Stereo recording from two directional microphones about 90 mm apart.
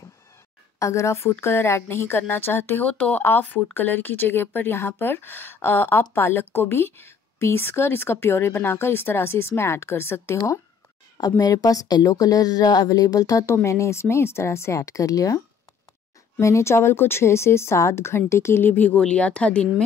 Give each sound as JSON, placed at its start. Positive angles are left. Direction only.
{"t": 0.7, "sound": "speech", "side_deg": 35}
{"t": 11.1, "sound": "speech", "side_deg": 45}